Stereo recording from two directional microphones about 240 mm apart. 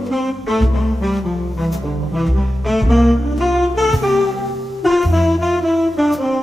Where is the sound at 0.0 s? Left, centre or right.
Centre.